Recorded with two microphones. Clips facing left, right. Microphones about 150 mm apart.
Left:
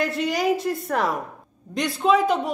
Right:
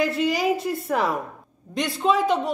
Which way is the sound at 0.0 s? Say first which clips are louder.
Right 1 dB; centre (ahead or behind).